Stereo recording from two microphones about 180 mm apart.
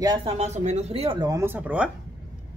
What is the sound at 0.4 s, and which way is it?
Speech, 40° right (ahead or behind).